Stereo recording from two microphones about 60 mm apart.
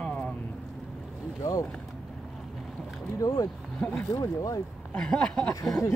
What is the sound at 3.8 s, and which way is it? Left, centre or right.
Speech, left.